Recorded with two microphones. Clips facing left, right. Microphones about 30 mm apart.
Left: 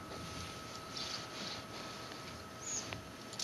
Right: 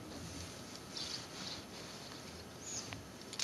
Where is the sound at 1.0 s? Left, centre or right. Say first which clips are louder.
Left 1 dB; centre.